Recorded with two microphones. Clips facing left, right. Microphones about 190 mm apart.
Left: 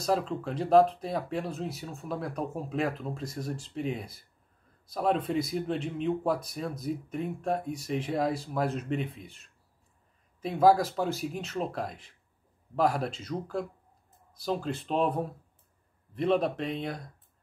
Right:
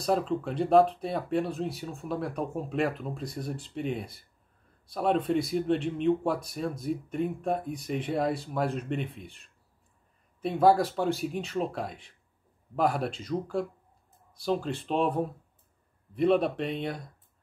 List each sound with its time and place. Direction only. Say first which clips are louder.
0.0 s speech: right 2 dB; centre (ahead or behind)